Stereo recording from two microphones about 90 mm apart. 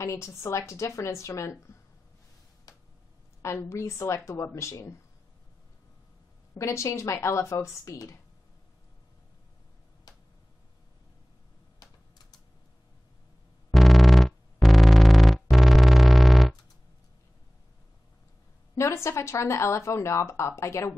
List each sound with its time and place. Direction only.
0.0 s speech: 30° left (ahead or behind)
2.7 s a sound: 45° left (ahead or behind)
3.6 s speech: 30° left (ahead or behind)
6.5 s speech: 35° left (ahead or behind)
10.1 s tick-tock: 45° left (ahead or behind)
11.8 s typing: 45° left (ahead or behind)
13.7 s music: centre (ahead or behind)
18.8 s speech: 30° left (ahead or behind)